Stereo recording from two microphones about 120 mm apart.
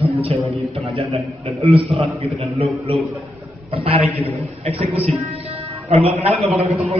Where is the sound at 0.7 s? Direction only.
60° right (ahead or behind).